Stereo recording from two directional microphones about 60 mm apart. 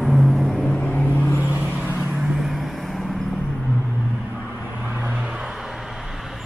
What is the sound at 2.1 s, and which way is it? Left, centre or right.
Vehicle, centre.